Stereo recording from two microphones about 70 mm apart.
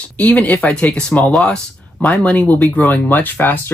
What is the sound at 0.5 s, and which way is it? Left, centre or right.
Speech, centre.